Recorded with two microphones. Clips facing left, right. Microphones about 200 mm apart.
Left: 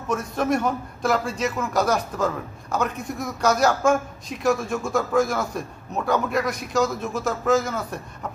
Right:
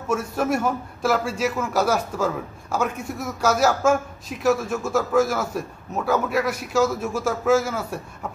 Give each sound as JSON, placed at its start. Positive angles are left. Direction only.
{"t": 0.1, "sound": "a man's voice", "side_deg": -5}